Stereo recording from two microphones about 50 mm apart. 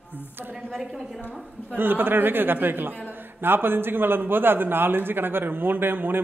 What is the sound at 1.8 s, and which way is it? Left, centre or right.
A man's voice, right.